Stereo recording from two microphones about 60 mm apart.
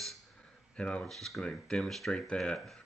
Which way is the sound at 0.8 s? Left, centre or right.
Centre.